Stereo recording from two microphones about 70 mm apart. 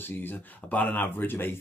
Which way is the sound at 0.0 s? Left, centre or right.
Left.